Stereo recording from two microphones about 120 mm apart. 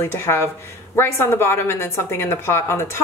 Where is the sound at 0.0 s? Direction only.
25° left (ahead or behind).